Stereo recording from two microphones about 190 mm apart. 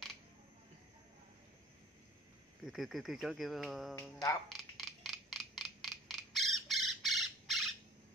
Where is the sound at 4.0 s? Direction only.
15° left (ahead or behind).